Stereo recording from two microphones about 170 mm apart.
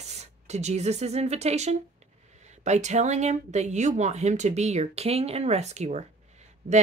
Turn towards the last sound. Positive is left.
turn(degrees=-40)  # may be behind; listen again after turning